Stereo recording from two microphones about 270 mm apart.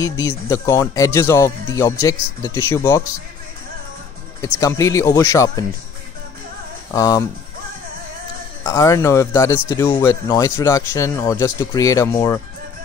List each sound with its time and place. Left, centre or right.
0.0 s speech: centre
4.4 s speech: centre
6.9 s speech: centre
8.6 s speech: centre